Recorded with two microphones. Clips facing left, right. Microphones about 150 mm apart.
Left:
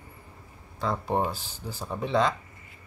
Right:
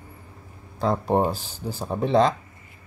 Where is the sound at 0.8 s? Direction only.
40° right (ahead or behind).